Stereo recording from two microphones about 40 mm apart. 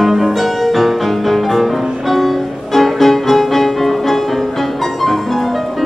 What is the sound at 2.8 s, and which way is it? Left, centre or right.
Music, centre.